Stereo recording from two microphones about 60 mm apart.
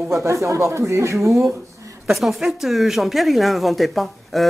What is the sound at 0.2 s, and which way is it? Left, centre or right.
Speech, right.